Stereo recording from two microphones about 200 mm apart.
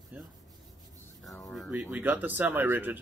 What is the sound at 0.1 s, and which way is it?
Rub, 5° right (ahead or behind).